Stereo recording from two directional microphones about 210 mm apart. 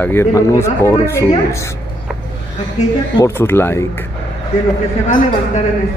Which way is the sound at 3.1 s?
10° left (ahead or behind).